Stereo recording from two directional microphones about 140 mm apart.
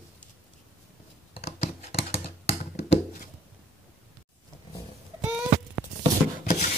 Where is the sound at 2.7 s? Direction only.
50° left (ahead or behind).